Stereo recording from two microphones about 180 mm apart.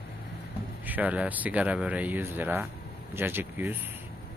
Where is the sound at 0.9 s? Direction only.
10° right (ahead or behind).